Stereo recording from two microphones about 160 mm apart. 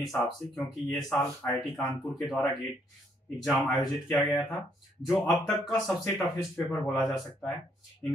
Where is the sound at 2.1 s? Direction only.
Centre (ahead or behind).